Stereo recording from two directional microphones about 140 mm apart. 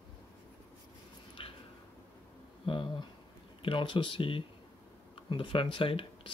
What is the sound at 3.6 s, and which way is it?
Speech, 35° left (ahead or behind).